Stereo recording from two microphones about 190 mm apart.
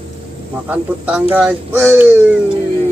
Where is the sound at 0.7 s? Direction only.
10° right (ahead or behind).